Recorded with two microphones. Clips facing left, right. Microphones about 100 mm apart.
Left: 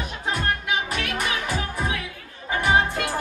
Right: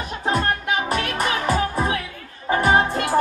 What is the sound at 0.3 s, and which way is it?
Music, 40° right (ahead or behind).